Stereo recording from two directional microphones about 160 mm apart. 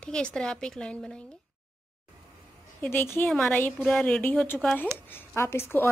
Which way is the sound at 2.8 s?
10° left (ahead or behind).